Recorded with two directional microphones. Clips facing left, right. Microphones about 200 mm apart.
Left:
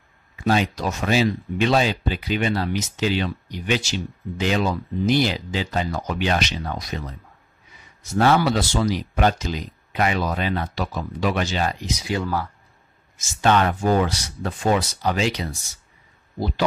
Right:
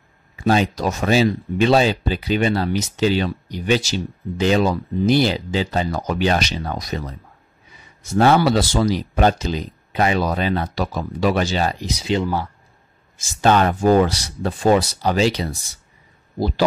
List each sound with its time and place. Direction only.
0.4 s speech: 35° right (ahead or behind)
8.2 s speech: 30° right (ahead or behind)
13.2 s speech: 35° right (ahead or behind)